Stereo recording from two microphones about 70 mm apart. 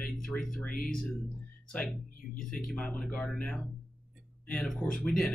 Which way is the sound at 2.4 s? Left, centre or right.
Centre.